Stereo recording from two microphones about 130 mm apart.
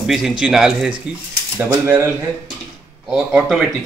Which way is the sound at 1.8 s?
20° right (ahead or behind).